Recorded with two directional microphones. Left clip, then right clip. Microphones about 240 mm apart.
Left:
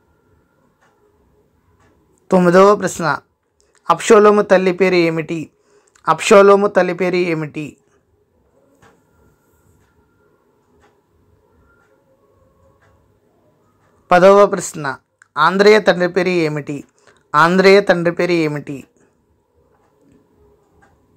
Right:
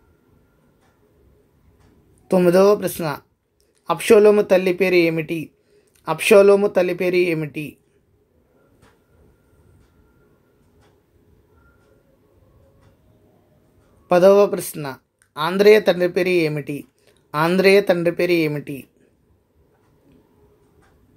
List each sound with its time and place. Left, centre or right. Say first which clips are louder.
2.2 s speech: left 4 dB; centre
14.1 s speech: left 4 dB; centre